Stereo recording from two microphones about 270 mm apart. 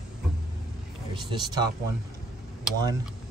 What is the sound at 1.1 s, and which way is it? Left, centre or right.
Speech, centre.